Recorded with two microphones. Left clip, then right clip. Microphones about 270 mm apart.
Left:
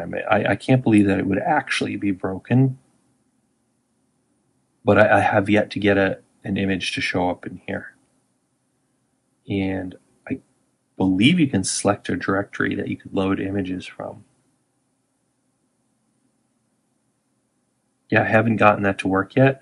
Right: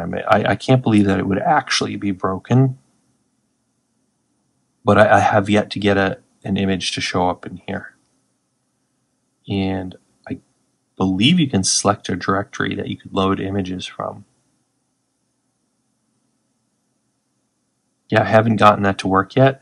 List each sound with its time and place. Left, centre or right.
0.0 s speech: centre
4.8 s speech: centre
9.5 s speech: centre
18.0 s speech: centre